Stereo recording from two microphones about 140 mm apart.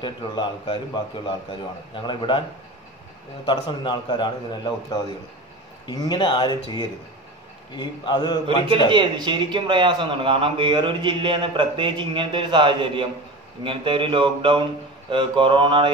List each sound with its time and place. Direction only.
0.0 s a man's voice: 35° left (ahead or behind)
3.4 s a man's voice: 30° left (ahead or behind)
5.9 s a man's voice: 30° left (ahead or behind)
8.9 s speech: 35° right (ahead or behind)